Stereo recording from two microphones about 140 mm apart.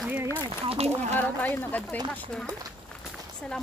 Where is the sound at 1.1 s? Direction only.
10° left (ahead or behind).